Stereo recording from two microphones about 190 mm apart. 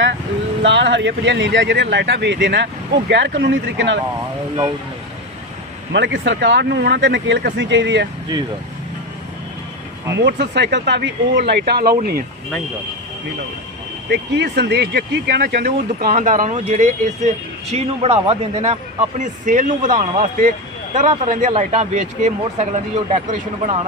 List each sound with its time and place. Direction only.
0.6 s speech: 70° right (ahead or behind)
5.9 s speech: 70° right (ahead or behind)
10.1 s speech: 65° right (ahead or behind)
14.0 s speech: 60° right (ahead or behind); by 23.9 s 35° right (ahead or behind)